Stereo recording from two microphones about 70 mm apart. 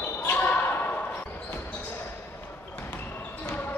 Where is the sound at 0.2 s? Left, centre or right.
Left.